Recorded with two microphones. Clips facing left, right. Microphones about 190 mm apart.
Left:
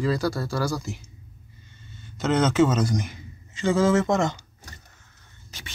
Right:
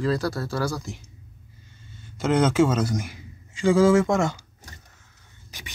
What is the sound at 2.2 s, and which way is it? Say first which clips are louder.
A man's voice: even; 10° right (ahead or behind).